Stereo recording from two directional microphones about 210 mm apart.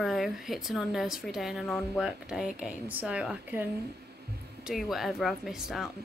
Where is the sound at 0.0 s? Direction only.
Centre (ahead or behind).